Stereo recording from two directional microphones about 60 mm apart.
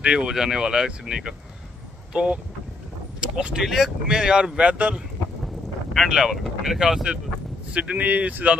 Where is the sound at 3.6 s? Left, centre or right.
Centre; by 4.9 s right.